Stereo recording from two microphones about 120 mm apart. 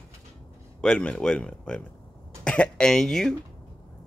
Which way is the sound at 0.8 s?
10° left (ahead or behind).